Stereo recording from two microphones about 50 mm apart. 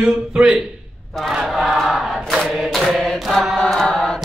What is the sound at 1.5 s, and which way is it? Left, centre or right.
Choir, centre.